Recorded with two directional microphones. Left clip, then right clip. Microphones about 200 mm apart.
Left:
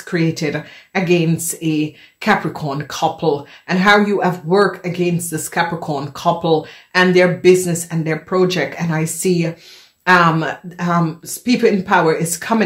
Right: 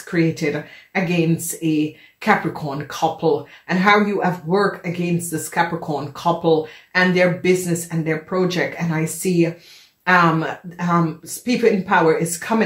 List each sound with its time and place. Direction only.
0.1 s speech: 35° left (ahead or behind)